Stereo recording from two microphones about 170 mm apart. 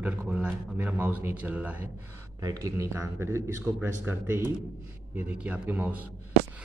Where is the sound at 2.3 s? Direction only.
20° right (ahead or behind).